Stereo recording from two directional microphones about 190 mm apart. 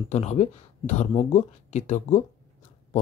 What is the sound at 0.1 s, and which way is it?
Speech, 35° left (ahead or behind).